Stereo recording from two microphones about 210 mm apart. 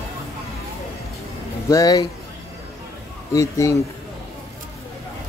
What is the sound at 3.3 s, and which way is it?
Speech, 15° left (ahead or behind).